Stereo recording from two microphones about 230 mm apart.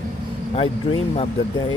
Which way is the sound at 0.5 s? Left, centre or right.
Left.